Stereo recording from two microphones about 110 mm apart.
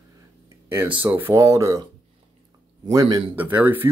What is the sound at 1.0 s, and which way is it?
Speech, 20° right (ahead or behind).